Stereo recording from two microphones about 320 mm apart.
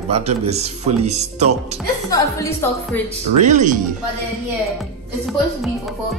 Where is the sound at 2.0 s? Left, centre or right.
Centre.